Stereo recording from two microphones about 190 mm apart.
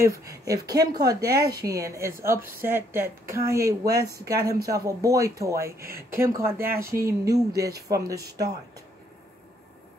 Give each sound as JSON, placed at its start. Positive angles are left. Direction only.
{"t": 0.0, "sound": "speech", "side_deg": -15}
{"t": 6.8, "sound": "speech", "side_deg": -50}
{"t": 7.1, "sound": "speech", "side_deg": -20}